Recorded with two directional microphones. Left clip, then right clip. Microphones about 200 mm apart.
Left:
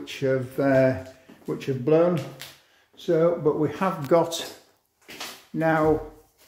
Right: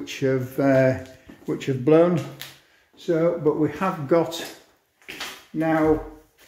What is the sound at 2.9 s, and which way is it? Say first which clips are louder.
Speech: even; 20° left (ahead or behind).